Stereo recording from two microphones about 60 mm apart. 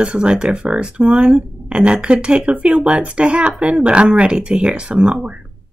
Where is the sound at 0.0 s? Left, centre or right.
Centre.